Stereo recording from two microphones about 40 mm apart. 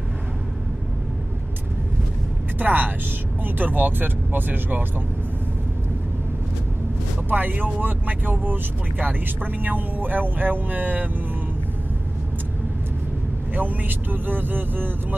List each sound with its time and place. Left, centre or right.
2.6 s speech: right
7.2 s speech: right
13.6 s speech: right